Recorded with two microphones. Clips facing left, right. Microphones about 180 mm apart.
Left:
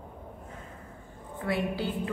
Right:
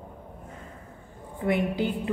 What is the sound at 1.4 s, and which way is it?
Speech, 20° right (ahead or behind).